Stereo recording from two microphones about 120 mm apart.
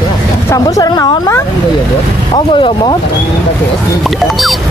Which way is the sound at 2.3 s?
40° left (ahead or behind).